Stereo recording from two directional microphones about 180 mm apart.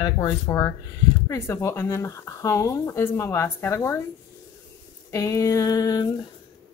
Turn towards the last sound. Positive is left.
turn(degrees=20)  # may be behind; listen again after turning